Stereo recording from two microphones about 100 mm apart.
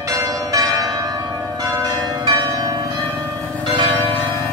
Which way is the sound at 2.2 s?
45° right (ahead or behind).